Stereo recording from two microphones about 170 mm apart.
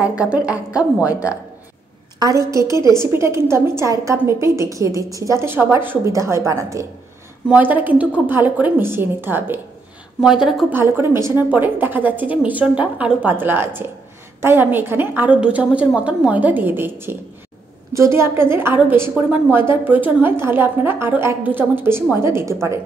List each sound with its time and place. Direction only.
0.0 s a woman's voice: 5° right (ahead or behind)
2.1 s a woman's voice: 20° right (ahead or behind); by 10.8 s 5° right (ahead or behind)
10.8 s a woman's voice: 15° right (ahead or behind)